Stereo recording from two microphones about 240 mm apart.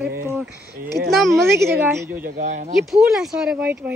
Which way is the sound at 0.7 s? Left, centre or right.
Right.